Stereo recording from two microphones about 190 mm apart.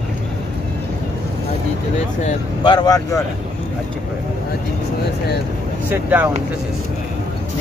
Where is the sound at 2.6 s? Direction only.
20° left (ahead or behind).